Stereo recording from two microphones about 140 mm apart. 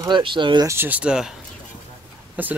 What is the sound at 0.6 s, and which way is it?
Speech, 15° right (ahead or behind).